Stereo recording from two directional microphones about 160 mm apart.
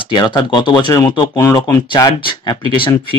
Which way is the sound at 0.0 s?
30° left (ahead or behind).